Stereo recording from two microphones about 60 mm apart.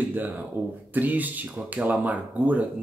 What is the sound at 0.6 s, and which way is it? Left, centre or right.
Speech, right.